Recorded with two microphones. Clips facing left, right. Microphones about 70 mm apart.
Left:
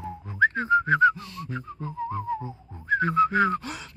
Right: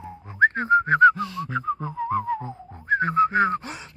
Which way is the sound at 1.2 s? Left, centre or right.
Right.